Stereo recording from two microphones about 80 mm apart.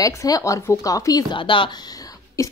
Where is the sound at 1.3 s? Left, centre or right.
Left.